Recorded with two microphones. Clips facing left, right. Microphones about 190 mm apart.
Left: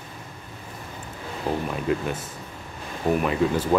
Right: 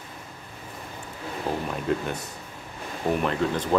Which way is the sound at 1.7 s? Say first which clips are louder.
Left 2 dB; centre (ahead or behind).